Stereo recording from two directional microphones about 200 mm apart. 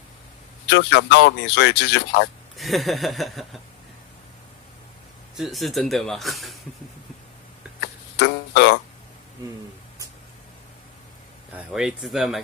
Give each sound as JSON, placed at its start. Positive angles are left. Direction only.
{"t": 0.7, "sound": "speech", "side_deg": 55}
{"t": 2.5, "sound": "speech", "side_deg": 0}
{"t": 5.3, "sound": "speech", "side_deg": 0}
{"t": 8.2, "sound": "music", "side_deg": 60}
{"t": 11.5, "sound": "speech", "side_deg": 0}